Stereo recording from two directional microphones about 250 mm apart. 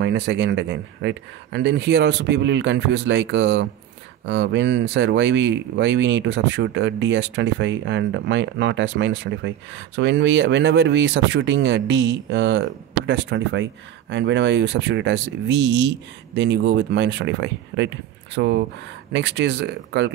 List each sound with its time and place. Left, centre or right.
0.0 s speech: right